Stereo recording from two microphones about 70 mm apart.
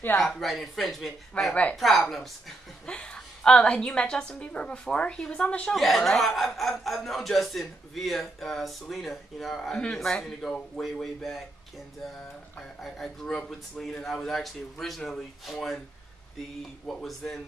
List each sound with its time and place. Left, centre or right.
0.3 s a man's voice: centre
1.5 s a woman's voice: centre
1.8 s a man's voice: centre
2.9 s a woman's voice: centre
5.8 s a man's voice: centre
12.5 s a man's voice: centre
16.8 s a man's voice: centre